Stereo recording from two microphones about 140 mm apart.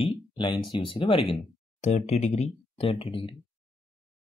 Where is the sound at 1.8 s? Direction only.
55° left (ahead or behind); by 3.3 s 35° left (ahead or behind).